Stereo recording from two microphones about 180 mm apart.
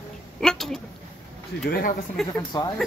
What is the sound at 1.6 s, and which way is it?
Speech, 60° left (ahead or behind).